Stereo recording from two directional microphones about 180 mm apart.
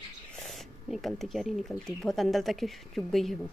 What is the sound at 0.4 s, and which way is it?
Speech, centre (ahead or behind).